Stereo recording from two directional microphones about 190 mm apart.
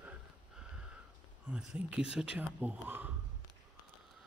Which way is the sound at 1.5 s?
5° right (ahead or behind).